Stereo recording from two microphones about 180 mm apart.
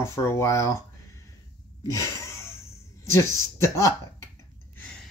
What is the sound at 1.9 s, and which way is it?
Speech, 15° left (ahead or behind).